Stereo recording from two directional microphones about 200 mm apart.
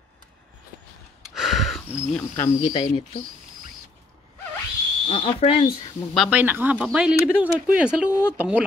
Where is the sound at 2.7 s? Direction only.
25° left (ahead or behind).